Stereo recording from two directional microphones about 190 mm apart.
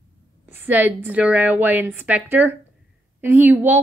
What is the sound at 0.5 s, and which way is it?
A woman's voice, 10° right (ahead or behind).